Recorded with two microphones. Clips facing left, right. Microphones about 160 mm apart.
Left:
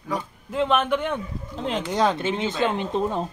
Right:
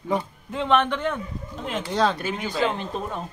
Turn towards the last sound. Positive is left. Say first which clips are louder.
# left 6 dB
turn(degrees=25)  # may be behind; listen again after turning